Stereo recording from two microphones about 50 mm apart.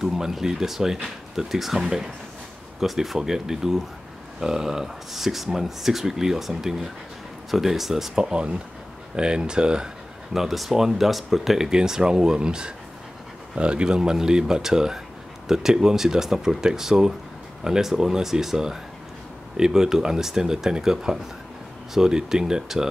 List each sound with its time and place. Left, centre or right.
0.0 s speech: centre
8.2 s speech: centre
10.3 s speech: centre